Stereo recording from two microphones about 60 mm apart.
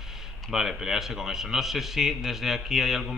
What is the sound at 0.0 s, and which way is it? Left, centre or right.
Speech, centre.